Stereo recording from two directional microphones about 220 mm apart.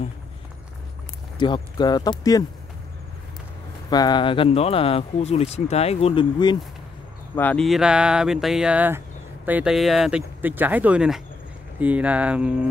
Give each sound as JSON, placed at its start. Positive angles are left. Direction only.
{"t": 1.4, "sound": "speech", "side_deg": 20}
{"t": 3.9, "sound": "speech", "side_deg": 20}
{"t": 7.3, "sound": "speech", "side_deg": 5}